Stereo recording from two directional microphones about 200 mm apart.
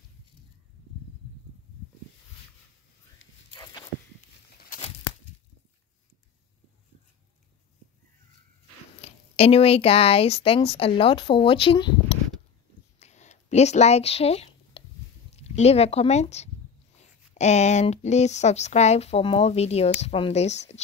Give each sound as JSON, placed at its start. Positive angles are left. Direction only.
{"t": 9.0, "sound": "speech", "side_deg": 30}
{"t": 13.0, "sound": "a sound", "side_deg": 35}
{"t": 15.3, "sound": "a woman's voice", "side_deg": 35}